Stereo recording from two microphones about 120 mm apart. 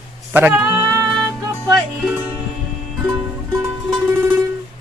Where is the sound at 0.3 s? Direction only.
15° right (ahead or behind).